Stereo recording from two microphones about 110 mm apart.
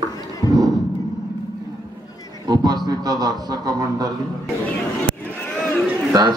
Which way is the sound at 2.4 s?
40° right (ahead or behind).